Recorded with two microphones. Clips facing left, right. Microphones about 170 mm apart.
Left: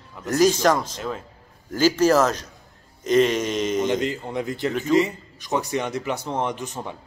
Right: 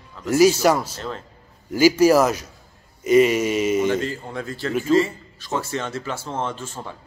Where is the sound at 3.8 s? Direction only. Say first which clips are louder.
Right 1 dB; 15° left (ahead or behind).